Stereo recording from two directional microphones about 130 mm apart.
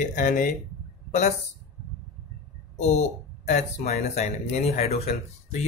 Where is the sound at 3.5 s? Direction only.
60° left (ahead or behind).